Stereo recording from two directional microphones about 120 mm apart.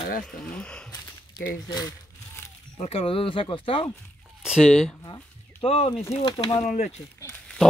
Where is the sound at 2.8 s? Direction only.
55° left (ahead or behind).